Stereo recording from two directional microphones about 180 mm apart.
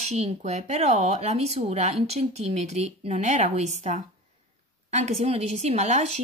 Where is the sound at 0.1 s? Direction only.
35° right (ahead or behind).